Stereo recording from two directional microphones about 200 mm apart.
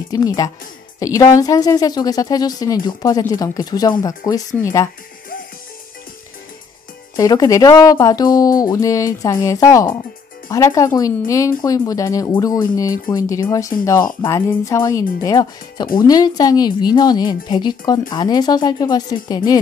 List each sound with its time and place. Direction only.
0.1 s speech: 20° left (ahead or behind)
7.2 s speech: 20° left (ahead or behind)